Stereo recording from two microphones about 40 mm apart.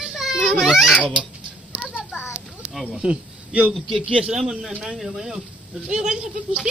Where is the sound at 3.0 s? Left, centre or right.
Right.